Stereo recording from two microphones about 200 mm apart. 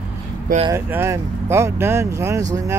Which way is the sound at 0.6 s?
15° right (ahead or behind).